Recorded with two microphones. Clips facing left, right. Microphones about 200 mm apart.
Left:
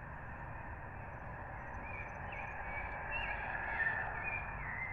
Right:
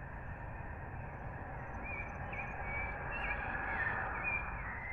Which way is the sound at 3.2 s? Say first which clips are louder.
Right 2 dB; 60° right (ahead or behind).